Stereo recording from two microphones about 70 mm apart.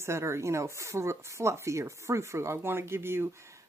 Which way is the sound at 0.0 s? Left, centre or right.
Right.